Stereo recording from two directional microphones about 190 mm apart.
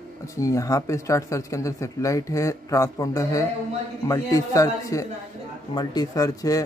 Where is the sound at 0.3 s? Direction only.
15° left (ahead or behind).